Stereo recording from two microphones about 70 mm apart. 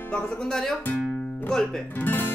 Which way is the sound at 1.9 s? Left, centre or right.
Left.